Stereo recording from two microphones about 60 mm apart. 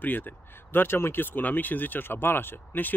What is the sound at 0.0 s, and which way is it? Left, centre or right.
Speech, left.